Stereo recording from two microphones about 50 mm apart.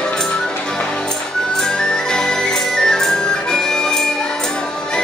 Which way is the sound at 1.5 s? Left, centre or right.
Centre.